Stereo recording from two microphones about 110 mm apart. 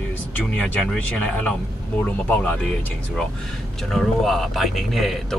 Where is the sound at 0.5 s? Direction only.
5° left (ahead or behind).